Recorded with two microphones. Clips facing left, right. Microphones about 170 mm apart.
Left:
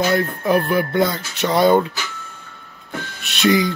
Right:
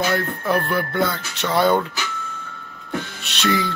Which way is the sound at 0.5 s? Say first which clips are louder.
Left 4 dB; 15° left (ahead or behind).